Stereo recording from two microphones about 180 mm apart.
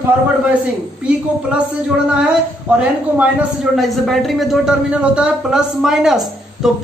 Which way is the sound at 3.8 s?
Centre (ahead or behind).